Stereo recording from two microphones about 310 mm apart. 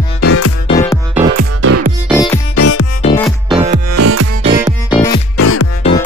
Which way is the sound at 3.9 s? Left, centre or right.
Right.